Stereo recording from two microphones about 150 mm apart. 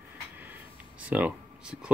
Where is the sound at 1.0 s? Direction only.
10° right (ahead or behind).